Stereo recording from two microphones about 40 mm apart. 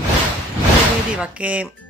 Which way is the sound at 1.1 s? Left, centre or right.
Right.